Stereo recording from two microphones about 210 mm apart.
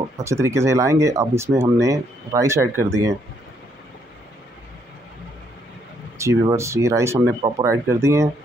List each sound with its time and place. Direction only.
0.2 s speech: 15° right (ahead or behind)
6.1 s speech: 15° right (ahead or behind)